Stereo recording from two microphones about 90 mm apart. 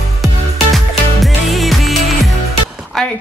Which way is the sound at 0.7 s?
Centre (ahead or behind).